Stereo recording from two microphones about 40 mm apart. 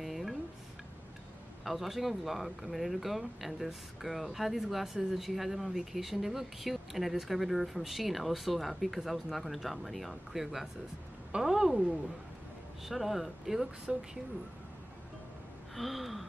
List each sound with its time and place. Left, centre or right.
0.0 s a sound: centre
1.6 s speech: centre
12.8 s speech: centre
13.9 s speech: centre
15.7 s speech: centre